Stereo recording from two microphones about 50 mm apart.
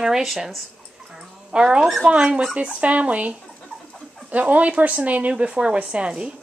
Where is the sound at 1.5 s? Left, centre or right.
Centre.